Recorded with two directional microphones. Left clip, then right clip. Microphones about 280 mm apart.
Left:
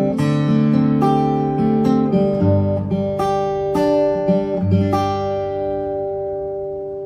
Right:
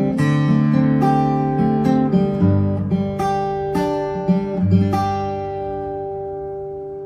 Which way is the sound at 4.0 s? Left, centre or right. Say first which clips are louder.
Left 6 dB; left.